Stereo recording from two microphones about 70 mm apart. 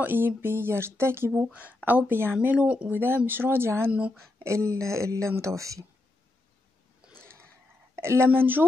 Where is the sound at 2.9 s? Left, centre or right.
Right.